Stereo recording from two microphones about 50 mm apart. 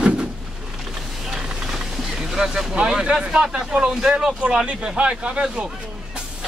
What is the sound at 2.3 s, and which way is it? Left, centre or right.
Speech, centre.